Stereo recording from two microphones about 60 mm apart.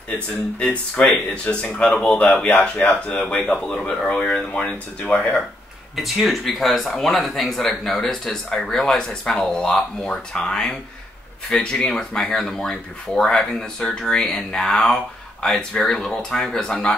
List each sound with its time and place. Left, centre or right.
0.6 s speech: centre
5.9 s speech: centre